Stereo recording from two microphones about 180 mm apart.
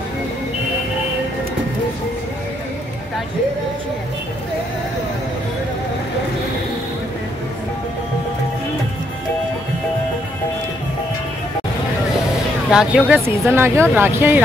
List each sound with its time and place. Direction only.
12.7 s speech: 5° right (ahead or behind)